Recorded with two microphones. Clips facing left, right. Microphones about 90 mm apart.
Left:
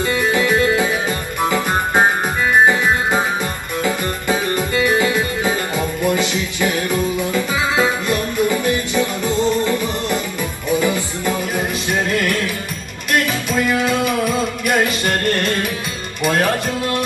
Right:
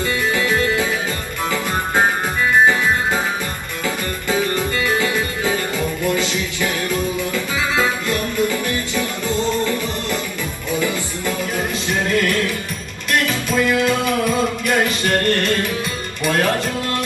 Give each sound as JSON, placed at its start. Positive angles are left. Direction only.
{"t": 0.0, "sound": "music", "side_deg": 20}
{"t": 2.6, "sound": "music", "side_deg": 20}
{"t": 13.5, "sound": "music", "side_deg": 20}